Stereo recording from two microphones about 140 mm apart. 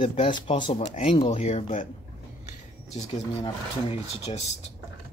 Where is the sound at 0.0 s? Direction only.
40° left (ahead or behind); by 1.9 s 55° left (ahead or behind).